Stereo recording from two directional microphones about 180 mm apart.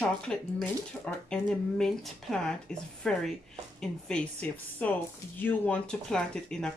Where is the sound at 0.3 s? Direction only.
5° left (ahead or behind).